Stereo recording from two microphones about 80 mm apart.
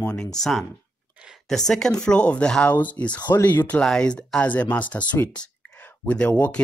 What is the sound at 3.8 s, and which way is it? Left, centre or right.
Speech, centre.